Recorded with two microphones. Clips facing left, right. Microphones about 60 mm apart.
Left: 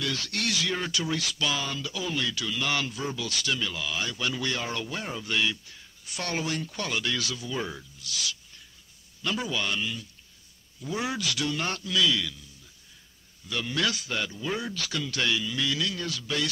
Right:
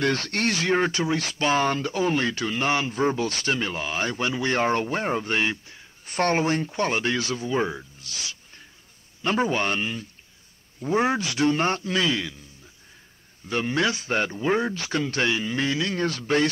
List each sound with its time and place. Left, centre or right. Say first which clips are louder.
0.0 s speech: right 7 dB; right
4.6 s speech: right 9 dB; right
13.5 s speech: right 5 dB; right